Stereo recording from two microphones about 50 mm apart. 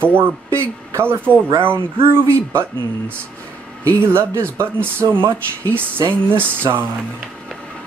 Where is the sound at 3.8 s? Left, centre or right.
Right.